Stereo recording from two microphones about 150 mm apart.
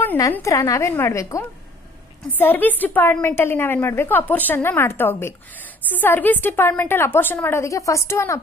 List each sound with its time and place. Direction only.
0.0 s a woman's voice: 15° left (ahead or behind)